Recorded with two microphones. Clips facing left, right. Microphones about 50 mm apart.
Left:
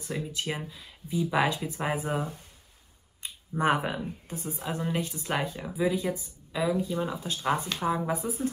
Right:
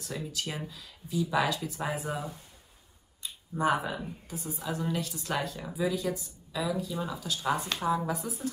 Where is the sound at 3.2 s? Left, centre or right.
Left.